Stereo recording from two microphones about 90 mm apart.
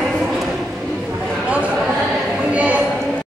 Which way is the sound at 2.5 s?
15° right (ahead or behind).